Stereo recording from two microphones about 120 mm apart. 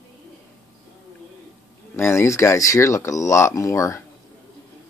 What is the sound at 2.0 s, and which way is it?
Speech, 20° left (ahead or behind).